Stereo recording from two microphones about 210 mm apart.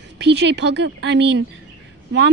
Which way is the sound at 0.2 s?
55° right (ahead or behind).